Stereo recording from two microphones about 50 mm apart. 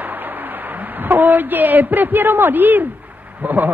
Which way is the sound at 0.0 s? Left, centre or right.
Right.